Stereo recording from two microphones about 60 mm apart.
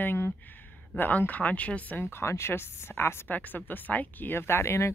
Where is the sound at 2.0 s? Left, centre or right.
Left.